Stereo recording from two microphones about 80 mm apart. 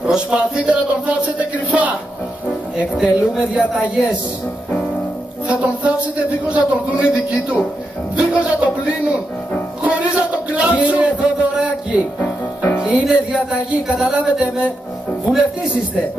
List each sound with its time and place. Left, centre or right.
0.0 s speech: centre
3.0 s speech: centre
5.5 s a man's voice: centre
8.2 s a sound: centre
12.2 s music: left
12.8 s music: centre
13.9 s speech: centre